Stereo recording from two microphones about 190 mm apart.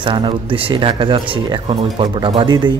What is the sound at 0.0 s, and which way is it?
Speech, 25° right (ahead or behind).